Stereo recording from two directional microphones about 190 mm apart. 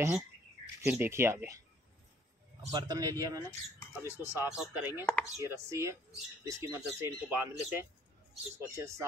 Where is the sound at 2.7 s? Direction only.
20° right (ahead or behind).